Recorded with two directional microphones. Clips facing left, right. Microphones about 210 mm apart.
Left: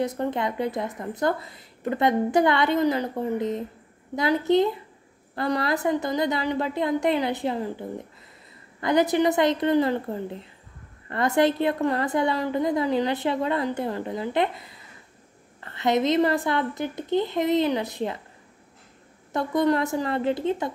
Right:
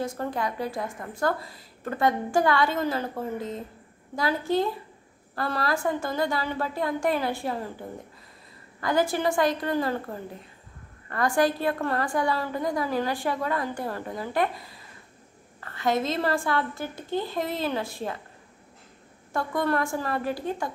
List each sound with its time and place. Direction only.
0.0 s speech: 20° left (ahead or behind)
8.8 s speech: 20° left (ahead or behind)
19.3 s speech: 20° left (ahead or behind)